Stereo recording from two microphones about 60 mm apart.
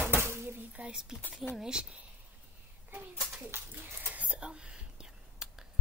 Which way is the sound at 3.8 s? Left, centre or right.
Right.